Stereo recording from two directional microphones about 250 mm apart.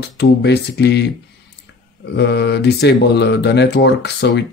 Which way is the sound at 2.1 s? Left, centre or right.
Left.